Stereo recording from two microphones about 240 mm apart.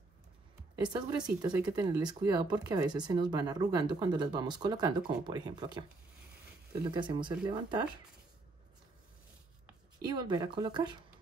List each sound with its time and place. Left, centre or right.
0.8 s speech: centre
10.0 s speech: centre